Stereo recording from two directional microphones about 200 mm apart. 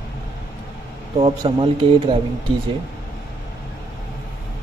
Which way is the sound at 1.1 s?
25° right (ahead or behind).